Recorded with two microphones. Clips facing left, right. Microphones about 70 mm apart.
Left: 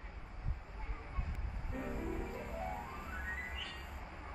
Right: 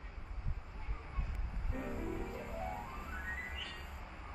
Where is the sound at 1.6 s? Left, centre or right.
Centre.